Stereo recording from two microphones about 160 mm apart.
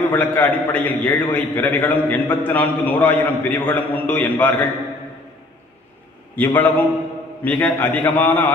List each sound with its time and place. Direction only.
0.1 s a man's voice: 10° left (ahead or behind)
6.3 s a man's voice: 10° left (ahead or behind)